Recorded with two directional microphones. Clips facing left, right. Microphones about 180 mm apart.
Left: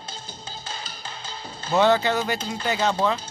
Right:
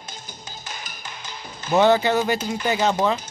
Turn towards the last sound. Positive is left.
turn(degrees=-15)  # may be behind; listen again after turning